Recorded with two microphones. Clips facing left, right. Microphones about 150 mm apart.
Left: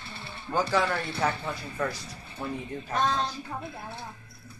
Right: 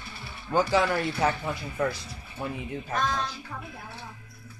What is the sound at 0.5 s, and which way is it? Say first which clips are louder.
Speech: right 3 dB; 10° right (ahead or behind).